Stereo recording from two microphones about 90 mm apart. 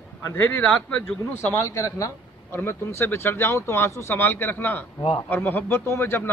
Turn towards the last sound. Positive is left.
turn(degrees=25)  # may be behind; listen again after turning